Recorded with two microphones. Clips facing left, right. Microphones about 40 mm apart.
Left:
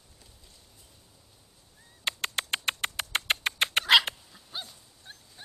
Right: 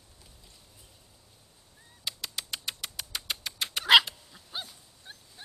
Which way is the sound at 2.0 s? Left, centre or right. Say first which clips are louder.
Left 6 dB; left.